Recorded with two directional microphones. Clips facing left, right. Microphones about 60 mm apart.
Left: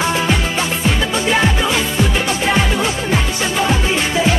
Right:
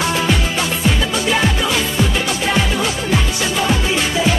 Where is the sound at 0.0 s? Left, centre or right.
Centre.